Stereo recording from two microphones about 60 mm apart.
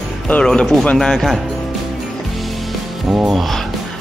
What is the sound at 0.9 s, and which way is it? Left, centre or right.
Speech, centre.